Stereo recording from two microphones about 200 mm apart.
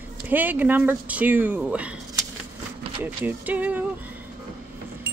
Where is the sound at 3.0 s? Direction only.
10° right (ahead or behind).